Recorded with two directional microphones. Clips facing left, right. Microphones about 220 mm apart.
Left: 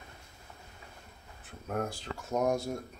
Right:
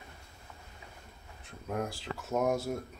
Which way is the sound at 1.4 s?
5° left (ahead or behind).